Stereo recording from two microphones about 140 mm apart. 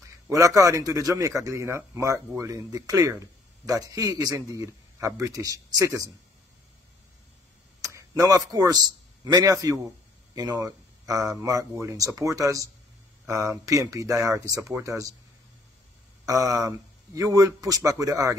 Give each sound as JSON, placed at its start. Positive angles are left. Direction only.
{"t": 0.3, "sound": "a man's voice", "side_deg": -25}
{"t": 7.8, "sound": "a man's voice", "side_deg": -25}
{"t": 16.3, "sound": "a man's voice", "side_deg": -25}